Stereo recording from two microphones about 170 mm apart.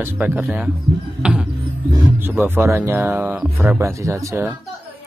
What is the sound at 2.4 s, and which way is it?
Speech, 15° right (ahead or behind).